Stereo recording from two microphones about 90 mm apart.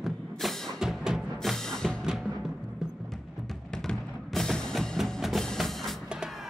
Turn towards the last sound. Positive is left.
turn(degrees=-5)  # may be behind; listen again after turning